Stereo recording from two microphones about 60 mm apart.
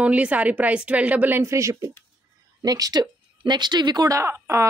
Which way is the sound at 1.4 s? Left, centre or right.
Right.